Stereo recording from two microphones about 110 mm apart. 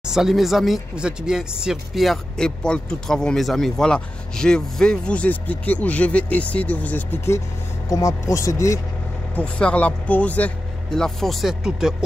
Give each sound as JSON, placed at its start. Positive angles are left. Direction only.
{"t": 0.0, "sound": "speech", "side_deg": -5}
{"t": 9.3, "sound": "speech", "side_deg": 10}